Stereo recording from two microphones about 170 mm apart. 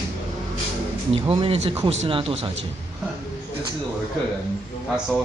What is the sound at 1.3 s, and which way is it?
Speech, 35° right (ahead or behind).